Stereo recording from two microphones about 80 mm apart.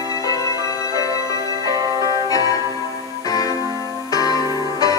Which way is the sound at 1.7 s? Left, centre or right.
Right.